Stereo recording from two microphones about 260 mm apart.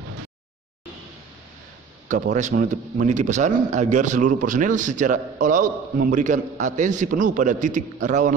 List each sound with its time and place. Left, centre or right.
2.0 s speech: right